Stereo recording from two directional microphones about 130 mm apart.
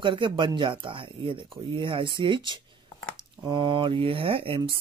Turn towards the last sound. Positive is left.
turn(degrees=-45)  # may be behind; listen again after turning